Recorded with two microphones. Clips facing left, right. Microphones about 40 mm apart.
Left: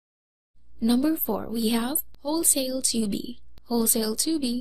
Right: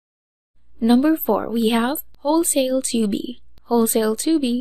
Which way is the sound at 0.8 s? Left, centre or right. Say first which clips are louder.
Right 7 dB; right.